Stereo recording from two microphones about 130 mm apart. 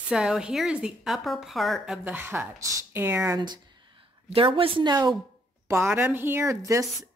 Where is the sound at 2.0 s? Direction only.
15° right (ahead or behind).